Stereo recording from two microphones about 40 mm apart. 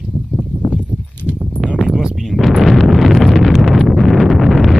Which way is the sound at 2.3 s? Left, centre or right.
Centre.